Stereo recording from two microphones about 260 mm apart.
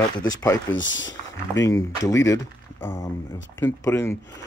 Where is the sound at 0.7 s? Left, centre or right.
Left.